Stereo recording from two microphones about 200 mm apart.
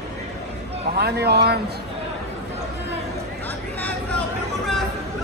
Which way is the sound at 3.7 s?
5° left (ahead or behind).